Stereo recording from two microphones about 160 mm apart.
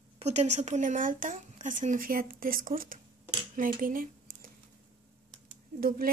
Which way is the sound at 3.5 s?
60° right (ahead or behind).